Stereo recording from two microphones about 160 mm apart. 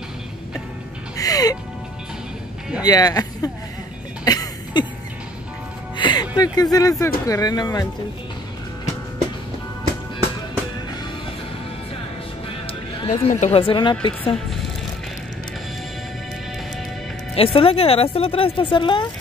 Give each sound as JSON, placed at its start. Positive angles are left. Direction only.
{"t": 1.1, "sound": "music", "side_deg": 20}
{"t": 2.8, "sound": "speech", "side_deg": 25}
{"t": 4.2, "sound": "music", "side_deg": 25}
{"t": 5.9, "sound": "music", "side_deg": 30}
{"t": 6.3, "sound": "speech", "side_deg": 25}
{"t": 13.0, "sound": "a woman's voice", "side_deg": 35}
{"t": 17.4, "sound": "speech", "side_deg": 35}